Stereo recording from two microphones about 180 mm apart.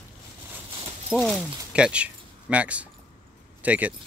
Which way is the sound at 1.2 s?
10° left (ahead or behind).